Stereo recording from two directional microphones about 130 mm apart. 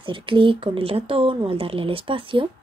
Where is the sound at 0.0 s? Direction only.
40° right (ahead or behind).